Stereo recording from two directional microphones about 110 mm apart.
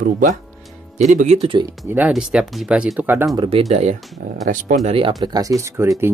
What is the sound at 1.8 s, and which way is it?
Speech, 15° right (ahead or behind).